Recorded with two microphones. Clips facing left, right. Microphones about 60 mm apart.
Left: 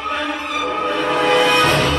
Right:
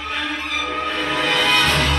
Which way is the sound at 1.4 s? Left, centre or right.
Centre.